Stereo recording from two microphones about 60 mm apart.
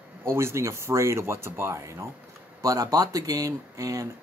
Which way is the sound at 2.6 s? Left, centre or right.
Right.